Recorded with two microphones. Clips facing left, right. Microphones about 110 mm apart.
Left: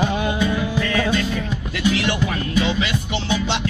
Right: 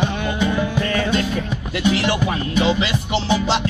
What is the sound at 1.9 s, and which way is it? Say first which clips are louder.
Music: right 2 dB; 30° right (ahead or behind).